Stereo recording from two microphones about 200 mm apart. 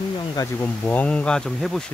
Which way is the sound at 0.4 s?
10° left (ahead or behind).